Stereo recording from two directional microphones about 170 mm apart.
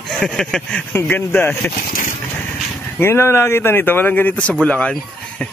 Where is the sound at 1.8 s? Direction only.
50° left (ahead or behind).